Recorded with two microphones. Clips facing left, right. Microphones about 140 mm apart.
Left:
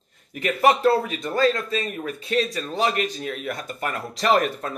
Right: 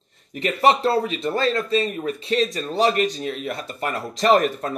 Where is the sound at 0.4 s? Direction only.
30° right (ahead or behind).